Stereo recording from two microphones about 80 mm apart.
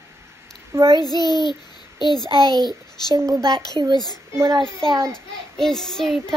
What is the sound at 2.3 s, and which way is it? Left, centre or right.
Speech, right.